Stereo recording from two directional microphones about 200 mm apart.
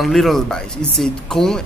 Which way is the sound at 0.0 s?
Centre (ahead or behind).